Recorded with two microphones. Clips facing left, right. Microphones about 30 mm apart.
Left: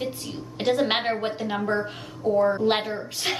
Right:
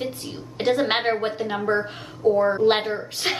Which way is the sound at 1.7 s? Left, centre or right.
Right.